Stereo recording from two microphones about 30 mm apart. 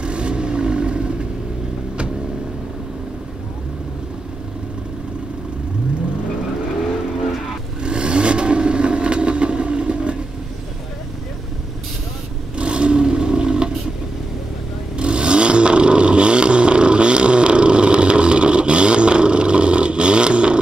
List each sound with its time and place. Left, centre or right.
0.0 s vehicle: right
7.8 s vehicle: right
12.5 s a sound: right
15.0 s vehicle: right